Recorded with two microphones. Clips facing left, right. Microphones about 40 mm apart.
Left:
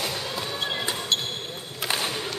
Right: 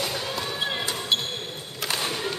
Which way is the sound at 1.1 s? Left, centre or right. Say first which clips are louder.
Right 2 dB; centre.